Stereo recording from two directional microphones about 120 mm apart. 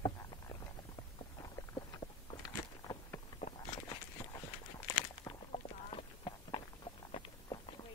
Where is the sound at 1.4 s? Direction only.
30° left (ahead or behind).